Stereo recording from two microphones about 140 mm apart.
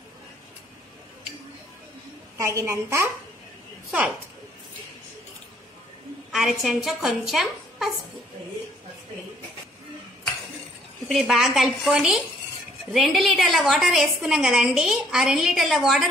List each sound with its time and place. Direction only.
2.4 s a woman's voice: 20° right (ahead or behind)
6.3 s a woman's voice: centre (ahead or behind)
11.1 s a woman's voice: centre (ahead or behind)